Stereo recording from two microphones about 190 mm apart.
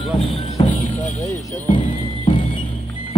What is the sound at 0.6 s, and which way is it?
Music, 25° left (ahead or behind).